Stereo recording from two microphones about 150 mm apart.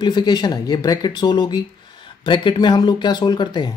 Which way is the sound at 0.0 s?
30° left (ahead or behind).